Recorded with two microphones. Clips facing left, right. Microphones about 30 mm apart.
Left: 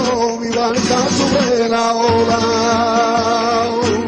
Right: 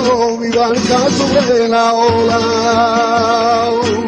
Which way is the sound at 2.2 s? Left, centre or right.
Right.